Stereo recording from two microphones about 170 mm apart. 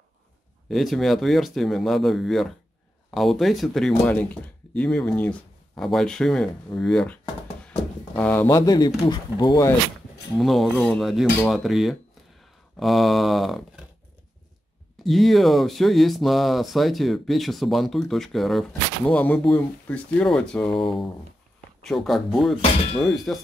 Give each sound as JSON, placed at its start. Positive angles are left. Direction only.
{"t": 0.7, "sound": "speech", "side_deg": 0}
{"t": 8.2, "sound": "speech", "side_deg": 10}
{"t": 10.3, "sound": "speech", "side_deg": 0}
{"t": 15.0, "sound": "speech", "side_deg": 0}